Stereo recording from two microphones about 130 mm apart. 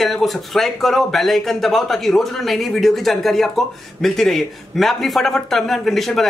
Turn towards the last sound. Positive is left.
turn(degrees=0)  # may be behind; listen again after turning